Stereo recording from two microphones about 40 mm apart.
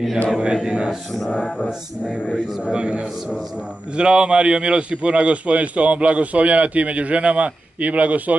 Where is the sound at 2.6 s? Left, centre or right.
Right.